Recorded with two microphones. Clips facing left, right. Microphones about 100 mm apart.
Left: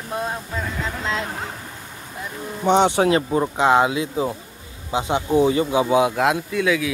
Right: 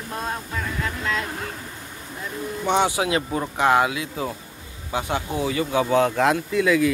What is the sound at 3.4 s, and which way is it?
Speech, 20° left (ahead or behind).